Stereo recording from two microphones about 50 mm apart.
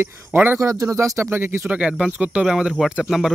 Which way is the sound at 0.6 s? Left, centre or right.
Right.